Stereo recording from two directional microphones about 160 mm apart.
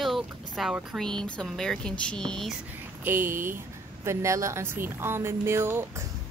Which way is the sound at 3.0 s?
15° right (ahead or behind).